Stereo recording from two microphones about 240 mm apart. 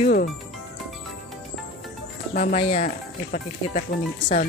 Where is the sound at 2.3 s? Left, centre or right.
Left.